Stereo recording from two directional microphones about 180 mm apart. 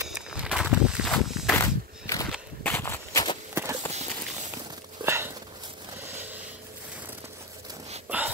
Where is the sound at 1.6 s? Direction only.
15° left (ahead or behind).